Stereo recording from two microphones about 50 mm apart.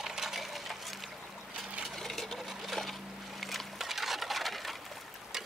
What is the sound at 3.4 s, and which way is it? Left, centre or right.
Music, centre.